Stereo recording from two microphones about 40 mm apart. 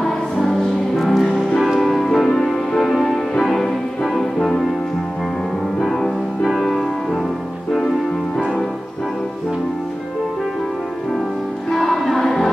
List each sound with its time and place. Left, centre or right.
0.0 s music: centre
5.9 s music: centre
11.7 s music: centre